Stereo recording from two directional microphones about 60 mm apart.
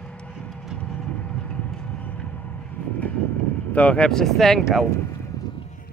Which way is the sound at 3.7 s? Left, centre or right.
Left.